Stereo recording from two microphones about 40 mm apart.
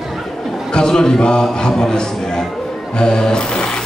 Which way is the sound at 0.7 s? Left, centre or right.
Centre.